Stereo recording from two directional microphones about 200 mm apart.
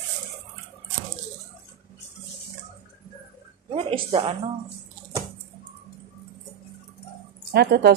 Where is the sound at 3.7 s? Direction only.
25° right (ahead or behind).